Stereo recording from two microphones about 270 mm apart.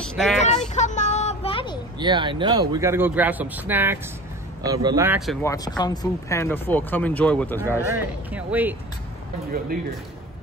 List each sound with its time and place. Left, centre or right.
0.0 s vehicle: centre
0.5 s a sound: left
2.0 s a man's voice: centre
5.4 s speech: centre
8.0 s a man's voice: centre